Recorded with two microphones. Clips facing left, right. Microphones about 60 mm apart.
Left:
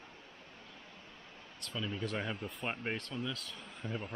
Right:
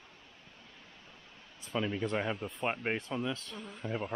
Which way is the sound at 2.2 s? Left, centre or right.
Centre.